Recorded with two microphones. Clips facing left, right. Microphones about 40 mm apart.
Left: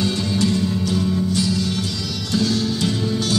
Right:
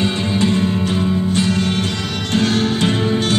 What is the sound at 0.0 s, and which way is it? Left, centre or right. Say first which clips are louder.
Music: right 3 dB; right.